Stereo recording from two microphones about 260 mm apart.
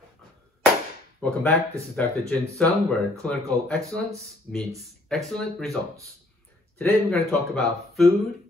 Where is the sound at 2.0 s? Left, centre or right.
Centre.